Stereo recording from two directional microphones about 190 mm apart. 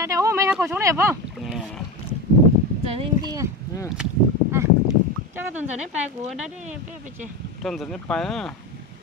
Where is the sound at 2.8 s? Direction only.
30° right (ahead or behind).